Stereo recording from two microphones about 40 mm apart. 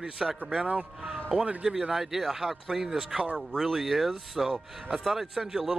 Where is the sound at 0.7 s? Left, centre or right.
Right.